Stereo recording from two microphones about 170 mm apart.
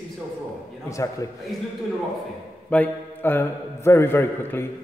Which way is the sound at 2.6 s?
10° left (ahead or behind).